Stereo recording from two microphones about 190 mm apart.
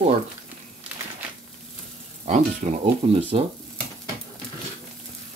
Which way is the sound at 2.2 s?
35° right (ahead or behind).